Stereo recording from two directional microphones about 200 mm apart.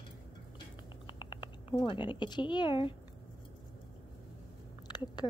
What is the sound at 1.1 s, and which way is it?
Speech, 25° left (ahead or behind).